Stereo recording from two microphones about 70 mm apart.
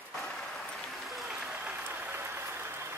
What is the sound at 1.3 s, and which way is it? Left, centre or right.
Applause, centre.